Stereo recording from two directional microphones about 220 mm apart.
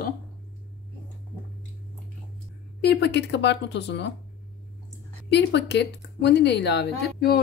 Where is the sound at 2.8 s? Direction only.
50° left (ahead or behind).